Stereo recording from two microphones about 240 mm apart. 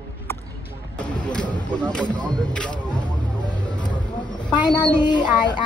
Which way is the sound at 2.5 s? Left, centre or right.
Centre.